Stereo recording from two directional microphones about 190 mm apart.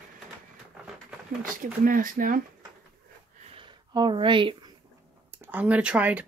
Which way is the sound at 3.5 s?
25° right (ahead or behind).